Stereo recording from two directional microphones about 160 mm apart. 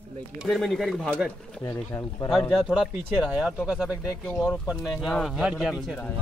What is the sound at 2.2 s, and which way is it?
Speech, centre (ahead or behind).